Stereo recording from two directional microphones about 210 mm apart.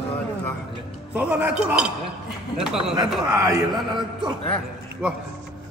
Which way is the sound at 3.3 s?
15° right (ahead or behind).